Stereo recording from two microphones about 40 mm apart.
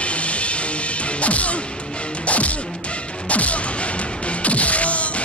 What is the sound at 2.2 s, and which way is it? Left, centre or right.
Music, left.